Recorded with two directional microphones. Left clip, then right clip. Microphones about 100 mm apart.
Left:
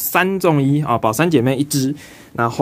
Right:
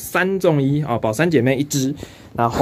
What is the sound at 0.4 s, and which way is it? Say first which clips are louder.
Speech: left 1 dB; 45° left (ahead or behind).